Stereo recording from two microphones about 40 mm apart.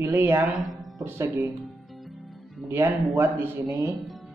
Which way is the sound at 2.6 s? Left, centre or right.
Right.